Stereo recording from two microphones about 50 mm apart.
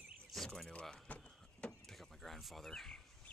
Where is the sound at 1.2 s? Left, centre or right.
Left.